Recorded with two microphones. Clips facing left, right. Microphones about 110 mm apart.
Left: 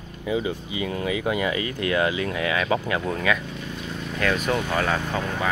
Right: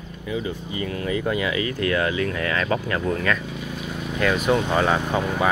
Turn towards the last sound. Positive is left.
turn(degrees=-10)  # may be behind; listen again after turning